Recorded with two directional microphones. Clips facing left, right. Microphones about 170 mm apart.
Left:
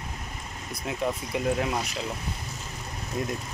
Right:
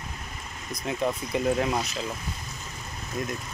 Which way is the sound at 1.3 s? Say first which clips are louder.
Right 3 dB; 5° left (ahead or behind).